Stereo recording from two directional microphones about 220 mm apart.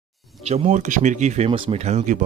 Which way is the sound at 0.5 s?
35° right (ahead or behind).